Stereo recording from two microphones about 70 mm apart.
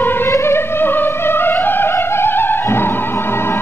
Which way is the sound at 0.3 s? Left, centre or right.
Left.